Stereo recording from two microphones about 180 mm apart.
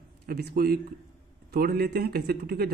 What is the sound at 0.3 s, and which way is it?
Speech, 60° right (ahead or behind).